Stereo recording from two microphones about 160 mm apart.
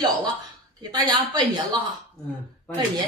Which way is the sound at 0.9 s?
25° right (ahead or behind).